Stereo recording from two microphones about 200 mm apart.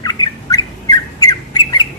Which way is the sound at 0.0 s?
20° left (ahead or behind).